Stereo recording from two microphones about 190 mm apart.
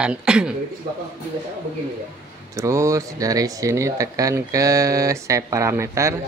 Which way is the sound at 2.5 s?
15° right (ahead or behind).